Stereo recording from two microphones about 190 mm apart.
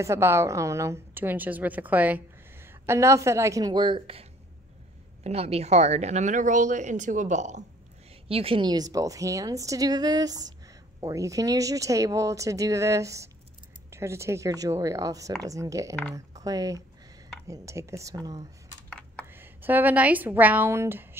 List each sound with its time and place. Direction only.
0.0 s a woman's voice: 15° right (ahead or behind)